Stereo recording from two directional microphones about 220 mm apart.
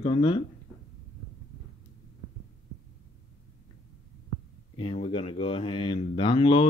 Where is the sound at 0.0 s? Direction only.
25° left (ahead or behind).